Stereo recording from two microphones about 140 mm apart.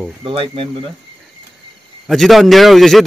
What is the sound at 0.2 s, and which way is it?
Speech, 40° right (ahead or behind).